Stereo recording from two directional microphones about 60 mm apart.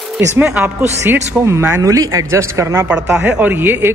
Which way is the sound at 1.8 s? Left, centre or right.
Right.